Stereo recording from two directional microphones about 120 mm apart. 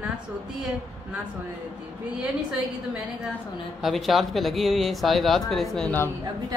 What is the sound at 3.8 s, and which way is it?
Speech, centre (ahead or behind).